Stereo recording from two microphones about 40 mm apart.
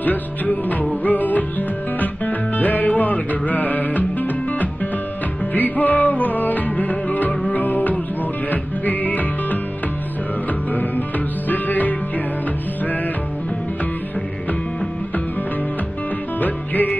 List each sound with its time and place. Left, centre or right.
0.0 s music: left
11.4 s music: left
16.3 s music: left